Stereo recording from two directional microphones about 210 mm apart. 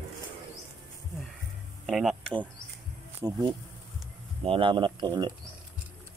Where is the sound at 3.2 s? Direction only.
20° right (ahead or behind).